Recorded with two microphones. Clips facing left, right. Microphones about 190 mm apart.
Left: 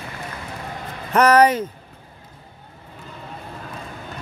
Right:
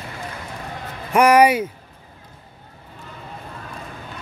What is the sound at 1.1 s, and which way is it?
Speech, 10° right (ahead or behind).